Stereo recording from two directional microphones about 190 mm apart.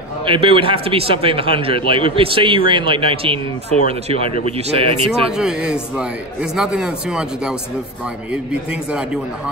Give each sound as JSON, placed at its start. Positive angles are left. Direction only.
{"t": 0.2, "sound": "a man's voice", "side_deg": -30}
{"t": 5.4, "sound": "speech", "side_deg": -5}